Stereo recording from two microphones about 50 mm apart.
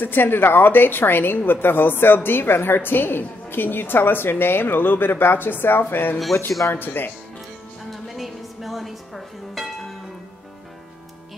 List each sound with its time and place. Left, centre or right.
0.0 s a woman's voice: left
7.9 s music: centre